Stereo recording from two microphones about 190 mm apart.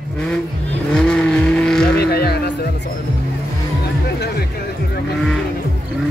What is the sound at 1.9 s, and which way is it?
Music, 55° left (ahead or behind).